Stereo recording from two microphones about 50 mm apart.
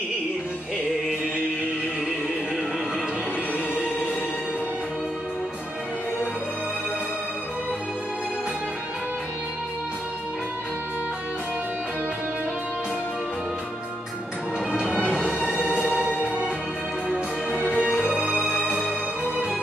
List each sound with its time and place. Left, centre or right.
15.7 s music: right
17.6 s music: centre